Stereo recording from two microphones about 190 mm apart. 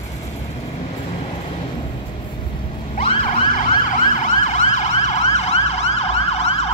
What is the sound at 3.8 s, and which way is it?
Emergency vehicle, 40° left (ahead or behind).